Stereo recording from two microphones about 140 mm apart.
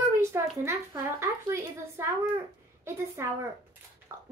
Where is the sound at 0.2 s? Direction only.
20° right (ahead or behind).